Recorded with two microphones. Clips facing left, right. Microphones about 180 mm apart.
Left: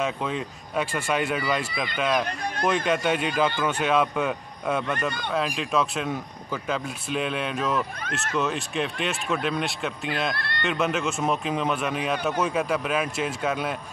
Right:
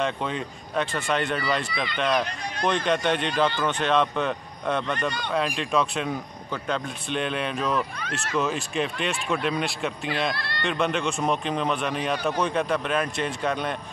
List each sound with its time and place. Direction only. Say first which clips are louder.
0.0 s a man's voice: even; centre (ahead or behind)
10.3 s speech: even; 55° left (ahead or behind)
10.6 s a man's voice: even; 5° left (ahead or behind)